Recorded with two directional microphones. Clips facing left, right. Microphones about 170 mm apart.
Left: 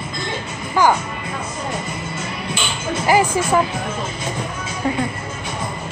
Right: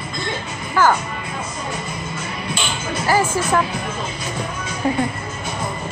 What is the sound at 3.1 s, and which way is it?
Speech, 15° left (ahead or behind).